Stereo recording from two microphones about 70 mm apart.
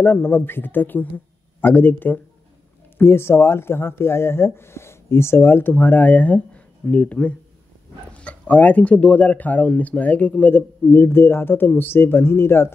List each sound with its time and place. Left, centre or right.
0.0 s speech: left